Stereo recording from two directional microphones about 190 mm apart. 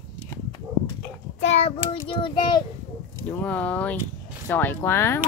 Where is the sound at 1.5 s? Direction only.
30° left (ahead or behind).